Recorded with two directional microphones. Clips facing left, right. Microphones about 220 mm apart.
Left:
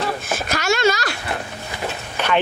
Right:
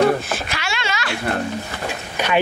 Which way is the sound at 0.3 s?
45° left (ahead or behind).